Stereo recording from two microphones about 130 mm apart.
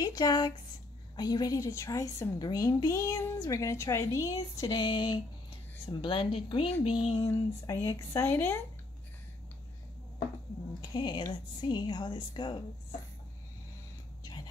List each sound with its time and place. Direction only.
0.0 s a woman's voice: 30° left (ahead or behind); by 7.2 s 50° left (ahead or behind)
7.2 s a woman's voice: 20° left (ahead or behind)
10.8 s a woman's voice: 35° left (ahead or behind)